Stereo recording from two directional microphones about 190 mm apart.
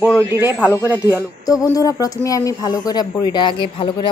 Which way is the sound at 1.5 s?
20° left (ahead or behind).